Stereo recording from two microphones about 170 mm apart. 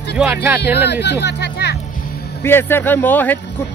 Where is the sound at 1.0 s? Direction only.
90° left.